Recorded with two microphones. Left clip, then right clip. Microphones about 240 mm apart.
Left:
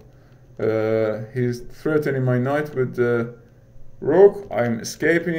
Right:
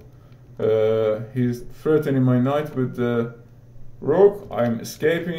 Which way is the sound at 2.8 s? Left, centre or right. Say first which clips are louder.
Left 3 dB; left.